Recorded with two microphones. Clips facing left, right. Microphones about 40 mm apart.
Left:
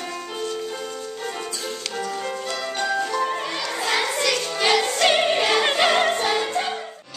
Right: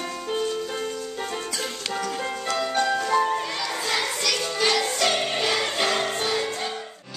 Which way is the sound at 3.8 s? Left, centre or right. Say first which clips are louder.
Left 5 dB; centre.